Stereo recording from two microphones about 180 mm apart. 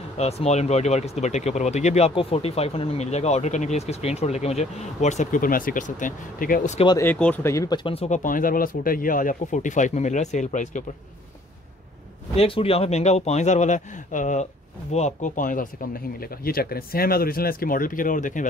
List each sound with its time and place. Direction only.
0.2 s speech: 35° left (ahead or behind)
6.9 s speech: 10° left (ahead or behind); by 10.8 s 45° left (ahead or behind)
12.4 s speech: 30° left (ahead or behind)